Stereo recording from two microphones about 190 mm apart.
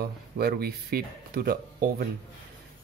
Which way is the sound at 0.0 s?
55° right (ahead or behind).